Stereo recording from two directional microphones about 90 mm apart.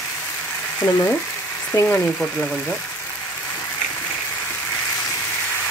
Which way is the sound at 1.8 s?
35° left (ahead or behind).